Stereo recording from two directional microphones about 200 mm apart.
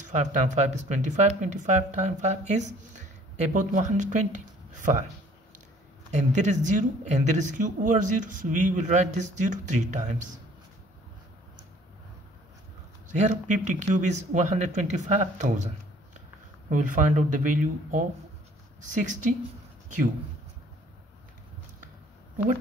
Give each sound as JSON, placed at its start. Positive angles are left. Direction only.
{"t": 0.0, "sound": "speech", "side_deg": -35}
{"t": 6.1, "sound": "speech", "side_deg": -35}
{"t": 13.1, "sound": "speech", "side_deg": -40}